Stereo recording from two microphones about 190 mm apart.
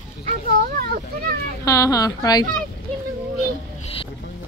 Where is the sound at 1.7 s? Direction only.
20° left (ahead or behind).